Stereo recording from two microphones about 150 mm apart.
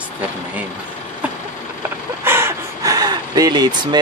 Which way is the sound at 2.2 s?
15° right (ahead or behind).